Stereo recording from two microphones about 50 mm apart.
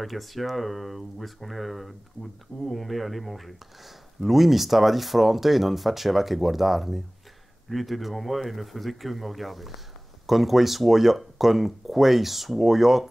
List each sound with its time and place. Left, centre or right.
0.0 s speech: centre